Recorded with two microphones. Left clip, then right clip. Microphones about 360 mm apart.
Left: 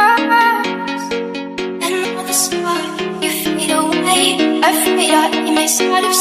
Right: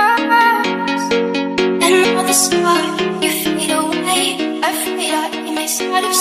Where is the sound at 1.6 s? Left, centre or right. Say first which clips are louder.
Right 7 dB; right.